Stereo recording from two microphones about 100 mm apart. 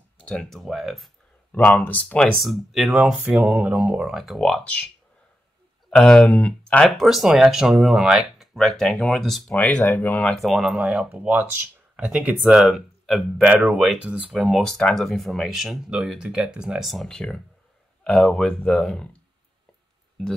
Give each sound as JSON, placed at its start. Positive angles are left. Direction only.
{"t": 0.2, "sound": "speech", "side_deg": 10}
{"t": 1.5, "sound": "speech", "side_deg": 15}
{"t": 2.4, "sound": "speech", "side_deg": 0}
{"t": 4.1, "sound": "speech", "side_deg": 0}
{"t": 5.9, "sound": "speech", "side_deg": 10}
{"t": 7.1, "sound": "speech", "side_deg": -5}
{"t": 9.5, "sound": "speech", "side_deg": 15}
{"t": 10.3, "sound": "speech", "side_deg": 0}
{"t": 12.6, "sound": "speech", "side_deg": 0}
{"t": 14.3, "sound": "speech", "side_deg": 0}